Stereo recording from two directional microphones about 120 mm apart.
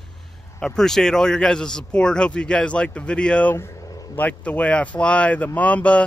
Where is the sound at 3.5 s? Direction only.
25° left (ahead or behind).